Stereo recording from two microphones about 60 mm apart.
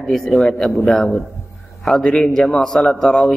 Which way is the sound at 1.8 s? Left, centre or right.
Centre.